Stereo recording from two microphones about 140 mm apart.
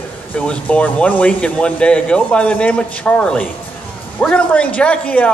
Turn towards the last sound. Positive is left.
turn(degrees=10)  # may be behind; listen again after turning